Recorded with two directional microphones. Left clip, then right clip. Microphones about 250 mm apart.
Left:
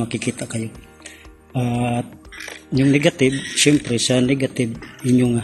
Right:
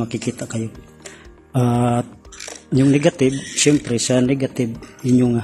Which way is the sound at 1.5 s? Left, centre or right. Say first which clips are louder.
Right 4 dB; centre.